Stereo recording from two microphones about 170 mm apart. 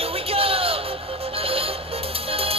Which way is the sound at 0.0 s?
35° right (ahead or behind).